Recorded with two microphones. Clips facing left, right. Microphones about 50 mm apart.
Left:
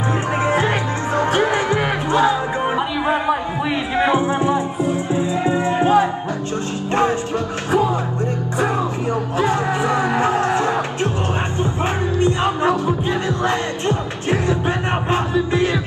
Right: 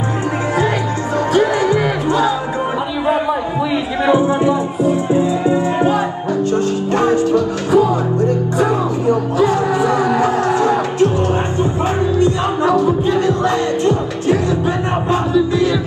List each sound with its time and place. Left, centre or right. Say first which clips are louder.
1.3 s music: right 6 dB; left
4.0 s music: right 4 dB; left
6.9 s music: right 4 dB; left
13.8 s music: right 5 dB; left